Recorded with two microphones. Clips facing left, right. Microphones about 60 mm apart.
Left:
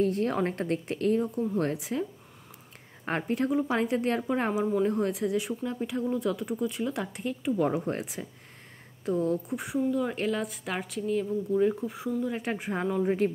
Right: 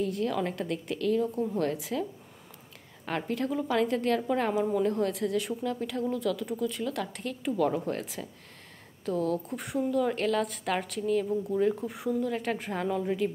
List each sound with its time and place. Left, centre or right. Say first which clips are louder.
0.0 s a woman's voice: left 3 dB; left
3.1 s speech: left 3 dB; left
9.5 s a woman's voice: left 1 dB; centre
12.2 s a woman's voice: left 1 dB; centre